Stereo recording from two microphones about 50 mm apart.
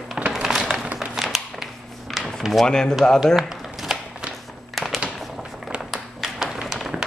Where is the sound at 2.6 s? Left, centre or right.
Centre.